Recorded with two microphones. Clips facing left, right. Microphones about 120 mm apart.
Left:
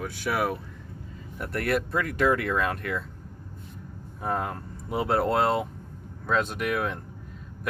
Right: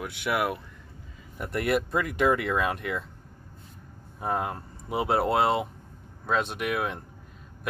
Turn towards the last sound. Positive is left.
turn(degrees=-5)  # may be behind; listen again after turning